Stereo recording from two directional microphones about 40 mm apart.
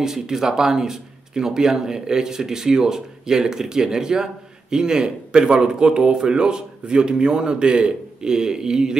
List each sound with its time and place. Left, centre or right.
0.0 s speech: centre